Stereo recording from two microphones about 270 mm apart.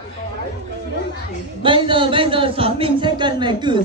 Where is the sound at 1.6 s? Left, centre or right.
Centre.